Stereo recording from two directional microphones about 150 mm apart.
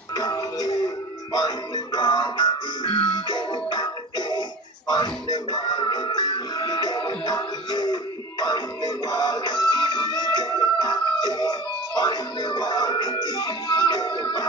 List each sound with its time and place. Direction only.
0.1 s music: 25° left (ahead or behind)